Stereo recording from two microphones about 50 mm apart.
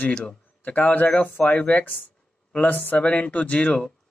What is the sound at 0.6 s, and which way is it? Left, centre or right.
Speech, left.